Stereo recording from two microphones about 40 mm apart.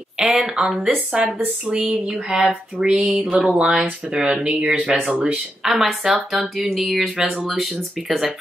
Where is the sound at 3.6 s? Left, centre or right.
Right.